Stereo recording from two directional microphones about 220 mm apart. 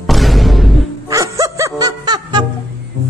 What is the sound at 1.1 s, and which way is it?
Music, 15° right (ahead or behind).